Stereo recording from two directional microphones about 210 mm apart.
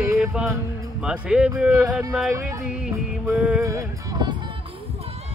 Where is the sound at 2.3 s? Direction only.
10° right (ahead or behind).